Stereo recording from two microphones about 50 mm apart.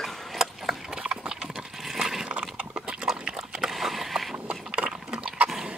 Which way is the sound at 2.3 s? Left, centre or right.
Right.